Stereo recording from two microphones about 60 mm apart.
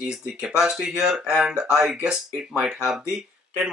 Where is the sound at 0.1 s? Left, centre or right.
Centre.